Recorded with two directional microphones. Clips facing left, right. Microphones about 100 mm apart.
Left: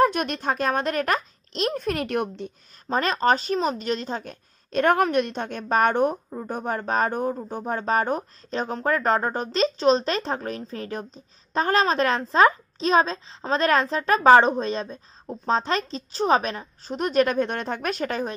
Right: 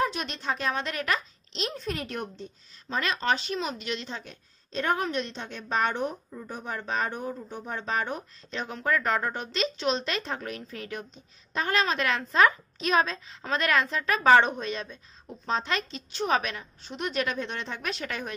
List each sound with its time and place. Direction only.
0.0 s speech: 50° left (ahead or behind)
2.9 s a woman's voice: 40° left (ahead or behind)